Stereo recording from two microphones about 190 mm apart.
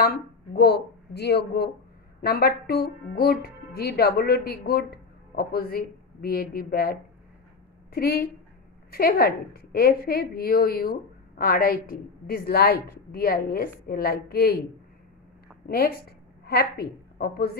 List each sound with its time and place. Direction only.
0.0 s a woman's voice: 55° left (ahead or behind)
15.6 s a woman's voice: 55° left (ahead or behind)